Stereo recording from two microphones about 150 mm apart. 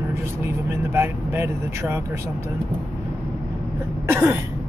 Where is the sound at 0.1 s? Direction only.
15° right (ahead or behind).